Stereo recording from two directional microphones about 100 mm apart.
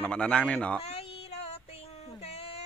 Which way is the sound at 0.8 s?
80° left.